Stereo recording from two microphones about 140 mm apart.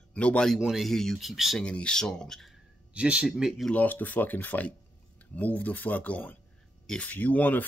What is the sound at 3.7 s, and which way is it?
Speech, 10° left (ahead or behind).